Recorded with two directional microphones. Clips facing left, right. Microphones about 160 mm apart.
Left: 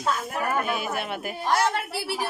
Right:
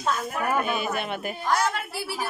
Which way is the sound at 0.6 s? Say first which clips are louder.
Right 1 dB; 5° left (ahead or behind).